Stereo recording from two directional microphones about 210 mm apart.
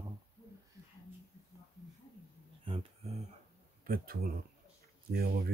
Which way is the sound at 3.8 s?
45° right (ahead or behind).